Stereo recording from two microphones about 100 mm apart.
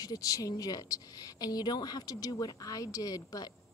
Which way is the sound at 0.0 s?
35° left (ahead or behind).